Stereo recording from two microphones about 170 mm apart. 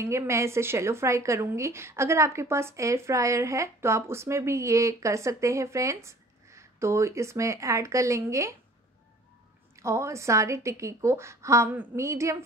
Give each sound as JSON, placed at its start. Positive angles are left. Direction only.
{"t": 0.0, "sound": "a woman's voice", "side_deg": -15}
{"t": 9.8, "sound": "a woman's voice", "side_deg": -15}